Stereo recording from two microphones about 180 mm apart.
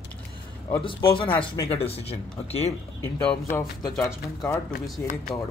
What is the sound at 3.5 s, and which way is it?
Speech, 15° left (ahead or behind).